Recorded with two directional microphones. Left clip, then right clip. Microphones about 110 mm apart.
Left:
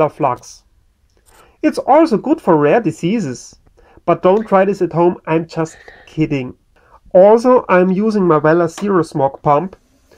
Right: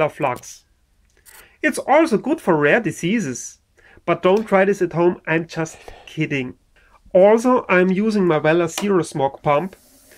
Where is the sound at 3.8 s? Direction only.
45° left (ahead or behind).